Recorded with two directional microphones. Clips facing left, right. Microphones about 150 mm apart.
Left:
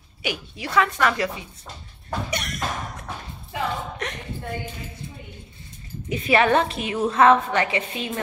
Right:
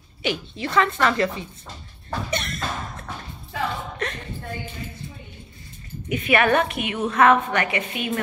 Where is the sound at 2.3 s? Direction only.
15° left (ahead or behind).